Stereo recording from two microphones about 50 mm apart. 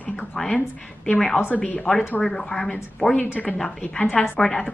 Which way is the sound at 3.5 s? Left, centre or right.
Centre.